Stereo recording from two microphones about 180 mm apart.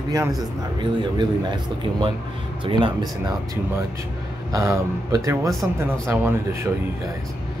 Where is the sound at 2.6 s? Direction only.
30° right (ahead or behind).